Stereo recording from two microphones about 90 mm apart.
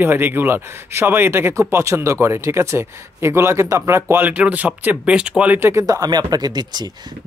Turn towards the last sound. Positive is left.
turn(degrees=-50)  # may be behind; listen again after turning